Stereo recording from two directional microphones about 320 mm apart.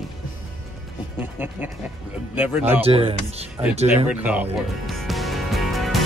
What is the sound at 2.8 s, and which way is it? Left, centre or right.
Speech, centre.